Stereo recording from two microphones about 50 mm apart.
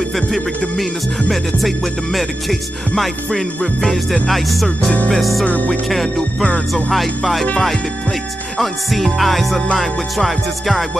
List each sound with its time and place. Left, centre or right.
3.8 s music: centre
5.4 s music: left
6.7 s music: centre
8.5 s music: centre